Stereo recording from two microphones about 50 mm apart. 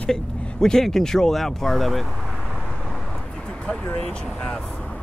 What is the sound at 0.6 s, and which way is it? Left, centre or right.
Speech, centre.